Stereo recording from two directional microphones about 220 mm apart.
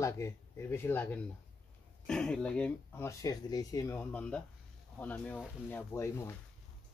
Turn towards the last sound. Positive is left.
turn(degrees=10)  # may be behind; listen again after turning